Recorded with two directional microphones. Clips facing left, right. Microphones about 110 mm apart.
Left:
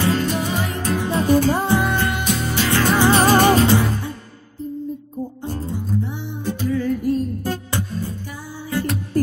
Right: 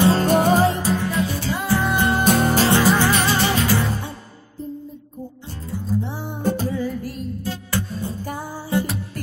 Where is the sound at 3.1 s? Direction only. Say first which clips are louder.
Left 6 dB; 45° left (ahead or behind).